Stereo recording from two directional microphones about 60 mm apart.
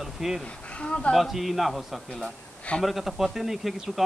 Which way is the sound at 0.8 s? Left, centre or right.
Centre.